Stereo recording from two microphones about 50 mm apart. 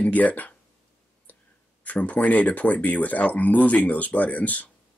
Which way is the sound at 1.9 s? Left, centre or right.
Left.